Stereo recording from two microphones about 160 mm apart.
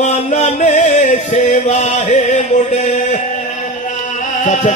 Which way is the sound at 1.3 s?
50° left (ahead or behind).